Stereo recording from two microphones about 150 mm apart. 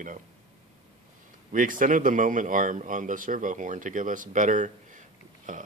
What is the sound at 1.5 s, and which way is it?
Speech, 60° right (ahead or behind).